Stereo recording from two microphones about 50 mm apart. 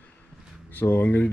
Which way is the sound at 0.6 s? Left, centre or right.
Left.